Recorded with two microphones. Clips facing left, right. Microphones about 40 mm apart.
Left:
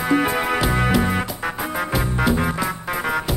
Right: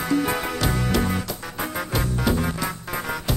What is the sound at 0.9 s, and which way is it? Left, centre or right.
Music, centre.